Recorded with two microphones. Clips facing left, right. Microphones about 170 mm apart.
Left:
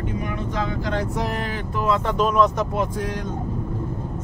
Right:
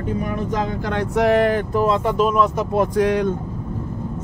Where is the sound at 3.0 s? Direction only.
70° right (ahead or behind).